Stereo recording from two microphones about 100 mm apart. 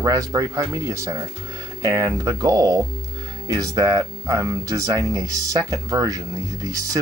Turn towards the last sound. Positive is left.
turn(degrees=-35)  # may be behind; listen again after turning